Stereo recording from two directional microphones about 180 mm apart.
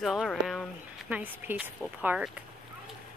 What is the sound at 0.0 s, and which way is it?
Speech, centre (ahead or behind).